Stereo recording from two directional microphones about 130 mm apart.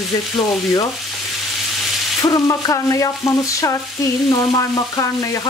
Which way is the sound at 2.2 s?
25° left (ahead or behind).